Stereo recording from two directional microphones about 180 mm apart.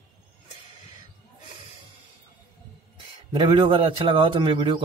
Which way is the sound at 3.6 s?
30° right (ahead or behind).